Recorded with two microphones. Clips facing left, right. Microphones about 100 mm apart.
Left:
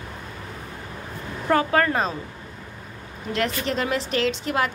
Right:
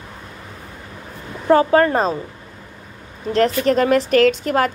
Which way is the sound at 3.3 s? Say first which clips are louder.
Right 9 dB; 40° right (ahead or behind).